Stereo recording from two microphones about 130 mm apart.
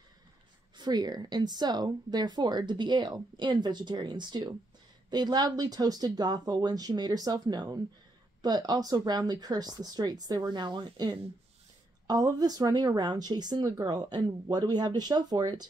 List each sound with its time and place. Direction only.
0.7 s speech: 35° right (ahead or behind)